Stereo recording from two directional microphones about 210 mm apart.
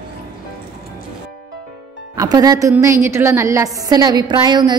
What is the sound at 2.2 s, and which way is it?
A woman's voice, 15° right (ahead or behind).